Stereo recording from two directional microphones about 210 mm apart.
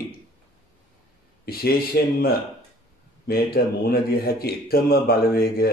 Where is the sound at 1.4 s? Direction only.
45° left (ahead or behind).